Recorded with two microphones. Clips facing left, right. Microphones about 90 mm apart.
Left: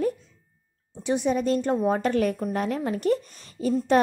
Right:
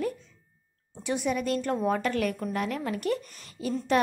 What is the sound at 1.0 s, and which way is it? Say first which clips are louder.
A woman's voice: left 5 dB; 25° left (ahead or behind).